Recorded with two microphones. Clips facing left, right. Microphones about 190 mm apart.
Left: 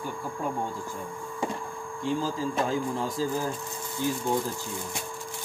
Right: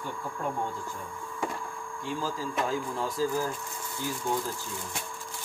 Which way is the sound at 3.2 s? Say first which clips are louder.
Right 1 dB; 25° left (ahead or behind).